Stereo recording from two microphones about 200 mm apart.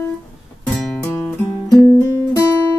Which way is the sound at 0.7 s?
5° left (ahead or behind).